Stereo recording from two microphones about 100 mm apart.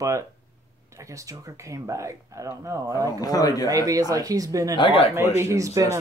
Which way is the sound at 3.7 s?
35° right (ahead or behind).